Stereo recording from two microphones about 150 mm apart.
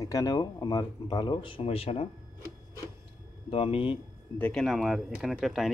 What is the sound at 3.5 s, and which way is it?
Speech, 40° left (ahead or behind).